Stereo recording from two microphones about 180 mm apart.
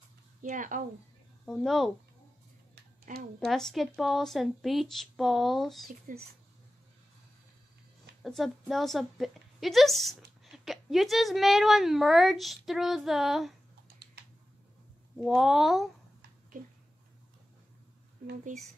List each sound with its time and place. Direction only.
0.4 s speech: 45° right (ahead or behind)
1.4 s a woman's voice: centre (ahead or behind)
3.3 s a woman's voice: centre (ahead or behind)
5.9 s speech: 50° right (ahead or behind)
8.2 s a woman's voice: centre (ahead or behind)
15.2 s a woman's voice: centre (ahead or behind)